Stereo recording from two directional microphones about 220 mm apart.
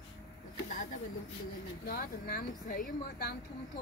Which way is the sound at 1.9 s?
40° left (ahead or behind).